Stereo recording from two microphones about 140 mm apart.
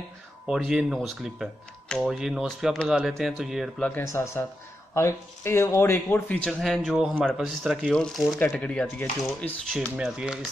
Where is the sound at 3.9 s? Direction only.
20° left (ahead or behind).